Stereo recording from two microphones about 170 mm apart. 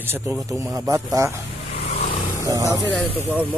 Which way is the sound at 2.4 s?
20° right (ahead or behind).